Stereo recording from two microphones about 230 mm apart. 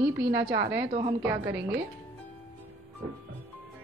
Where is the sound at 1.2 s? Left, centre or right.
Centre.